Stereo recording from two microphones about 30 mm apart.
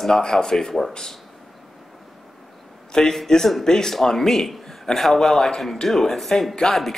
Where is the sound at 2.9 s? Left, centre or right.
Left.